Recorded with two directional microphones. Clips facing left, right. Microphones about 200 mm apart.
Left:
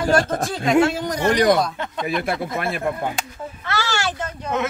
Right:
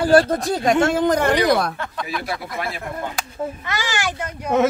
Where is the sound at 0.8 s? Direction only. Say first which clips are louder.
Right 3 dB; 50° right (ahead or behind).